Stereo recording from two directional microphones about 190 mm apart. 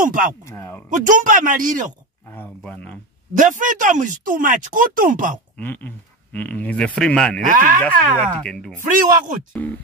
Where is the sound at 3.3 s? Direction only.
45° right (ahead or behind).